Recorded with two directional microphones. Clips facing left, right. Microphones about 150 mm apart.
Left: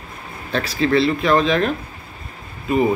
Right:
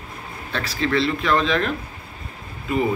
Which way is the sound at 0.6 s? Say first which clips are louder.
Left 4 dB; 15° left (ahead or behind).